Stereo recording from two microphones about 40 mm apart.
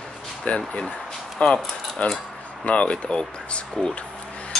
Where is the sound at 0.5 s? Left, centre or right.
Left.